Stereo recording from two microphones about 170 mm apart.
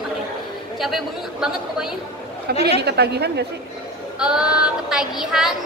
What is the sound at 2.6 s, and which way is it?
Speech, 75° right (ahead or behind).